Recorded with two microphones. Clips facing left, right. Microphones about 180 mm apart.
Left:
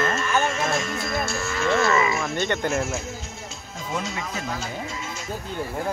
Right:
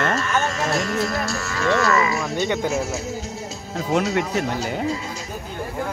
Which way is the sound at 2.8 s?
40° right (ahead or behind).